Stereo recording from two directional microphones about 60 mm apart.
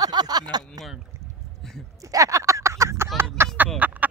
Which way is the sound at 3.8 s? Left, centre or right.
Right.